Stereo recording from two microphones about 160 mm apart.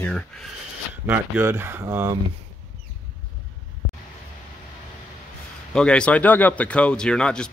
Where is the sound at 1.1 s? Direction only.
15° right (ahead or behind).